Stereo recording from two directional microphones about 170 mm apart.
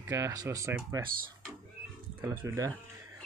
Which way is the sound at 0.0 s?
20° right (ahead or behind).